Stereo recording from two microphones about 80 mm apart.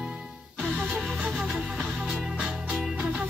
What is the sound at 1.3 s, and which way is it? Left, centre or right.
Music, centre.